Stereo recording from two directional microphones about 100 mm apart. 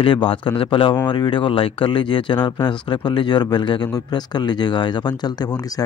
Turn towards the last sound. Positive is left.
turn(degrees=40)  # may be behind; listen again after turning